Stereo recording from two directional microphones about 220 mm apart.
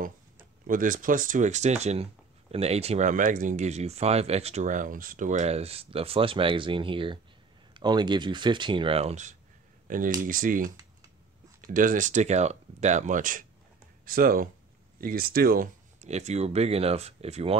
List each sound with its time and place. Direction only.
0.0 s speech: 40° right (ahead or behind)